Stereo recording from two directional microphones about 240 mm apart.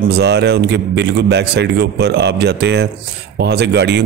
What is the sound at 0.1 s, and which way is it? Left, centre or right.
Speech, right.